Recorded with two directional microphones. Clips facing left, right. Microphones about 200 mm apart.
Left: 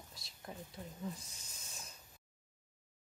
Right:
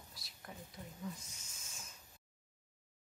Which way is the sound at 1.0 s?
35° left (ahead or behind).